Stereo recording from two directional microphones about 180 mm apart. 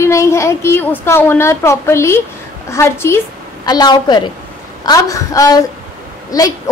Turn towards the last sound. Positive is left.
turn(degrees=20)  # may be behind; listen again after turning